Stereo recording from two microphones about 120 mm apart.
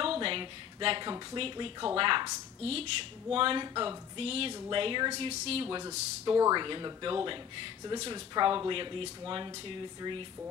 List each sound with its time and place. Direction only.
0.0 s a sound: 50° right (ahead or behind)
1.3 s speech: 45° right (ahead or behind)
2.6 s speech: 55° right (ahead or behind)
3.6 s speech: 35° right (ahead or behind)
4.2 s speech: 50° right (ahead or behind)
5.8 s speech: 30° right (ahead or behind)